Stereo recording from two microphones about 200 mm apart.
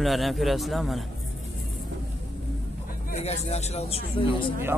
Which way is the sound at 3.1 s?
35° left (ahead or behind).